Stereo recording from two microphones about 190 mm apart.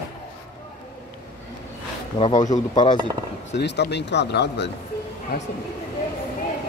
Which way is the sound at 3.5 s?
65° left (ahead or behind).